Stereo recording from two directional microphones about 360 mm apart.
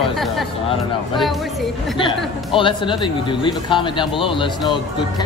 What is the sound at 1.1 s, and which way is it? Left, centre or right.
Speech, centre.